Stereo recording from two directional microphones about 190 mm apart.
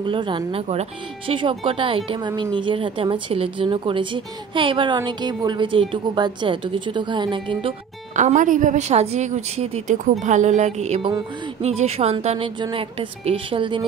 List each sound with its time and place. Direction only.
0.0 s speech: 25° right (ahead or behind)
8.2 s a woman's voice: 40° right (ahead or behind); by 13.8 s 25° right (ahead or behind)